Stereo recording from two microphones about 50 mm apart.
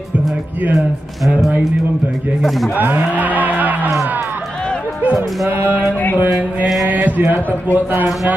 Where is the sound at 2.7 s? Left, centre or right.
Right.